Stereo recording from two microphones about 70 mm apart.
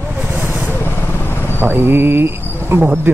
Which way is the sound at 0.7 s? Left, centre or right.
Left.